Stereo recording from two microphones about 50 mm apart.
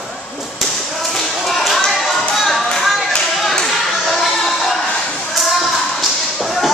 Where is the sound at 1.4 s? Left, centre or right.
Centre.